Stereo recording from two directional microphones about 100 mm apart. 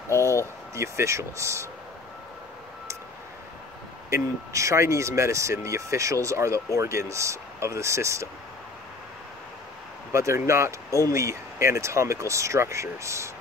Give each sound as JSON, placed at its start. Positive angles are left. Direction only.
{"t": 0.1, "sound": "a sound", "side_deg": 30}
{"t": 0.7, "sound": "speech", "side_deg": -30}
{"t": 4.1, "sound": "speech", "side_deg": -30}
{"t": 10.1, "sound": "speech", "side_deg": -30}